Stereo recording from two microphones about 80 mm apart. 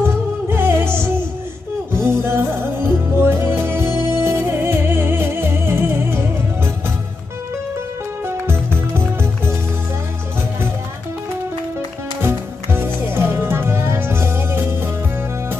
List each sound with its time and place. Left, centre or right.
0.0 s music: right
8.3 s music: right
12.2 s music: right